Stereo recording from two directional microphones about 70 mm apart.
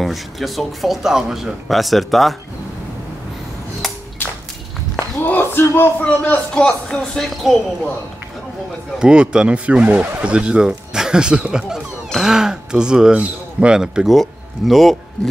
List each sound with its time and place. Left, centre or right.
0.0 s speech: centre
4.2 s a sound: left
5.2 s speech: left
6.5 s speech: centre
9.0 s speech: centre